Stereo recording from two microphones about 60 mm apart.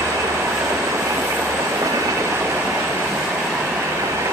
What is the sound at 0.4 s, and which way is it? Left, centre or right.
Train, right.